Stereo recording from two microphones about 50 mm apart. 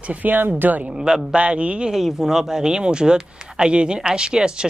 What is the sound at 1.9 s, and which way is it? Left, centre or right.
Speech, centre.